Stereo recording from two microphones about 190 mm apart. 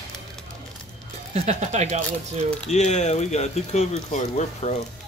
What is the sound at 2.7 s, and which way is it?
Speech, 35° left (ahead or behind).